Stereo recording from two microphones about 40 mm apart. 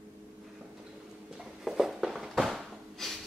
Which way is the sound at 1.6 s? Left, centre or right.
Centre.